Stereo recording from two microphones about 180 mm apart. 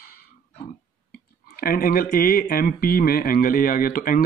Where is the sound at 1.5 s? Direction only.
55° left (ahead or behind).